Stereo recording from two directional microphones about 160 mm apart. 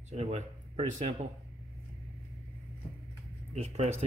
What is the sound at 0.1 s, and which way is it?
Speech, 45° right (ahead or behind).